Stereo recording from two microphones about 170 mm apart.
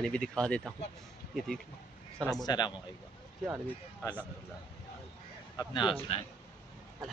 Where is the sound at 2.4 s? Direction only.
25° left (ahead or behind).